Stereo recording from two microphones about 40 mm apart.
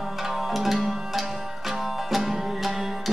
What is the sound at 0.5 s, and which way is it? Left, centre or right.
Music, centre.